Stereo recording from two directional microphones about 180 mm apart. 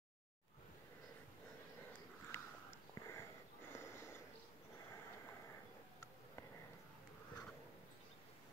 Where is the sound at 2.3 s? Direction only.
10° left (ahead or behind).